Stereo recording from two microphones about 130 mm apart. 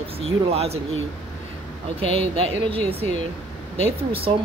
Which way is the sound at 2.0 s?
50° right (ahead or behind).